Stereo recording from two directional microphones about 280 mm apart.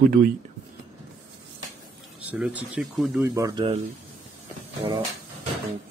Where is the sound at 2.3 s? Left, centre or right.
Centre.